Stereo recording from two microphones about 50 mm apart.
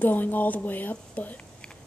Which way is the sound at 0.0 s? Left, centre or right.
Left.